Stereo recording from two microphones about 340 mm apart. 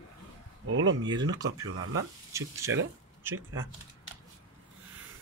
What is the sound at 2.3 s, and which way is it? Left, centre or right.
Speech, centre.